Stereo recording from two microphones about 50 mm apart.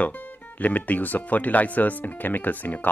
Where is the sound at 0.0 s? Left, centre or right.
Left.